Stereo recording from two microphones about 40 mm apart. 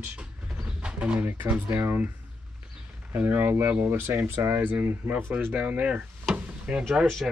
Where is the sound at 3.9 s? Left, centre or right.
Right.